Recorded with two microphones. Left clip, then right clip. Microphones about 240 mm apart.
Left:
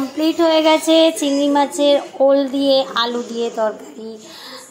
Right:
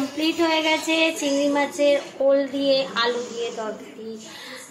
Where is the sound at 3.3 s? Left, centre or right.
Centre.